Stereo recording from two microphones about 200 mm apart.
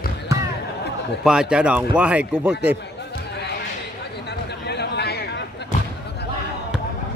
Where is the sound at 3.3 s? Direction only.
55° left (ahead or behind).